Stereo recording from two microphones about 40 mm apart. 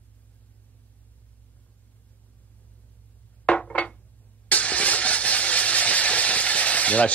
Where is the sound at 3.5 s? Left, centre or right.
Left.